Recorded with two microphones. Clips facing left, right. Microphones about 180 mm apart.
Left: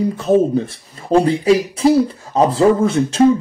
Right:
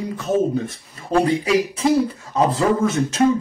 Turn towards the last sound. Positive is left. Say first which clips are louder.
# left 4 dB
turn(degrees=30)  # may be behind; listen again after turning